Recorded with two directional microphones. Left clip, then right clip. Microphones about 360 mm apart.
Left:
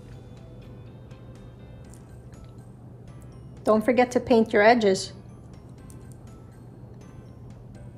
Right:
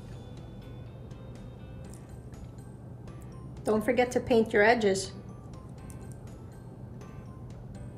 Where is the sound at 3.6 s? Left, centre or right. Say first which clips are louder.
Left 6 dB; left.